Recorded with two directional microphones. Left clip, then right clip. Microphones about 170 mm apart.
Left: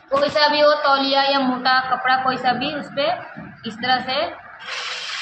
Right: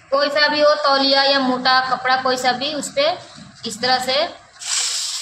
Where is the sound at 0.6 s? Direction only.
25° right (ahead or behind).